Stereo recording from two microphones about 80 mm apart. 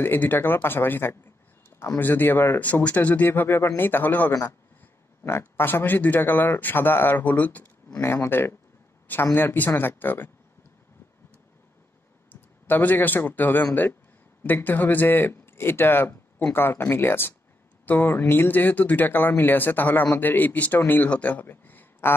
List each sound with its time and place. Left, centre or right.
0.0 s speech: left
12.3 s speech: left